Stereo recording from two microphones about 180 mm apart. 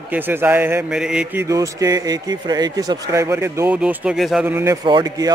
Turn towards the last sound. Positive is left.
turn(degrees=-25)  # may be behind; listen again after turning